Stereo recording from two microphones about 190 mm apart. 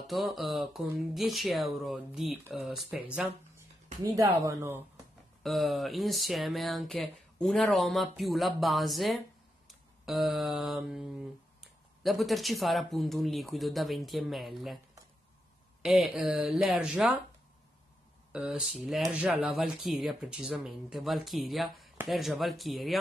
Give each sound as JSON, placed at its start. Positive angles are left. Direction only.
{"t": 0.0, "sound": "speech", "side_deg": 0}
{"t": 3.2, "sound": "speech", "side_deg": -15}
{"t": 5.4, "sound": "speech", "side_deg": 0}
{"t": 9.7, "sound": "mantra", "side_deg": 0}
{"t": 15.8, "sound": "speech", "side_deg": 0}
{"t": 18.3, "sound": "speech", "side_deg": 0}